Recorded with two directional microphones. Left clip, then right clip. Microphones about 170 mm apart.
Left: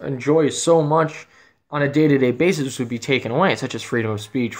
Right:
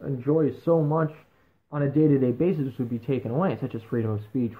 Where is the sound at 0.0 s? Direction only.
30° left (ahead or behind).